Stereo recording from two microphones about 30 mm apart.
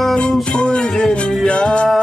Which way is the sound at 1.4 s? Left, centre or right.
Left.